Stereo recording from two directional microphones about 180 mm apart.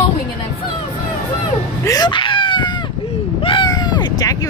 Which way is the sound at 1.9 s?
25° left (ahead or behind).